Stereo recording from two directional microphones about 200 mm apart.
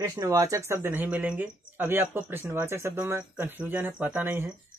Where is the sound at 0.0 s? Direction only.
15° right (ahead or behind).